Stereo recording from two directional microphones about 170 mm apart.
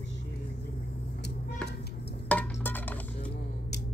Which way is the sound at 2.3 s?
10° left (ahead or behind).